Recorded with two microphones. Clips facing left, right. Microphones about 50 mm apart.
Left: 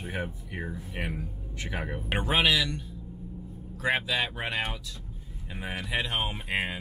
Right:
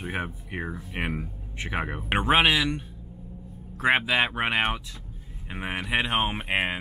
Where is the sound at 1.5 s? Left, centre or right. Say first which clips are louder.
Right 4 dB; right.